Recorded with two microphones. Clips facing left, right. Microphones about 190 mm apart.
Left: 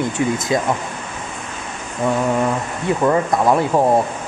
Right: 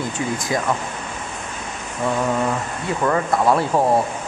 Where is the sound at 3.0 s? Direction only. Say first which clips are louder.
Left 2 dB; 15° left (ahead or behind).